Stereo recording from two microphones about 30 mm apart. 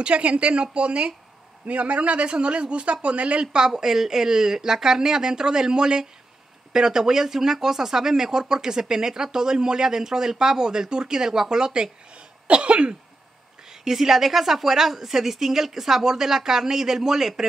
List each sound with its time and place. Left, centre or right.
0.0 s speech: right
1.7 s speech: right
3.7 s speech: centre
12.4 s speech: right
13.7 s a woman's voice: centre